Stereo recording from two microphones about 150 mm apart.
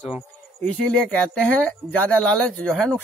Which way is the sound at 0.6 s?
10° left (ahead or behind).